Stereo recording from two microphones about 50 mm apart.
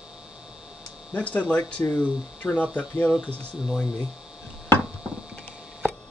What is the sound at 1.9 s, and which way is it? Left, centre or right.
Speech, centre.